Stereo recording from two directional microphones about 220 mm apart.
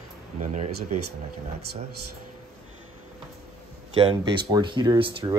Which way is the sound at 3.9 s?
25° right (ahead or behind).